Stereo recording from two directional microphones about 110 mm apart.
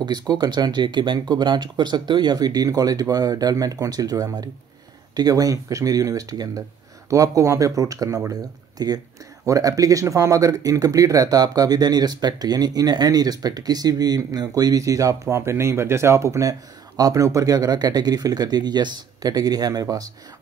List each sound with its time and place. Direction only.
0.0 s speech: 40° right (ahead or behind)